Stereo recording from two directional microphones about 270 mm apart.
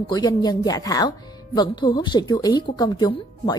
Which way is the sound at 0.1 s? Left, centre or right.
Centre.